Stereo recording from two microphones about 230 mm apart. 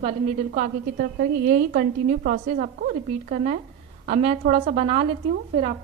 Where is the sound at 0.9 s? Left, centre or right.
Right.